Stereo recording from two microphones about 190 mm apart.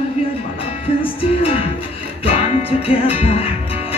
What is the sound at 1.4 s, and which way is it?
Music, 30° left (ahead or behind).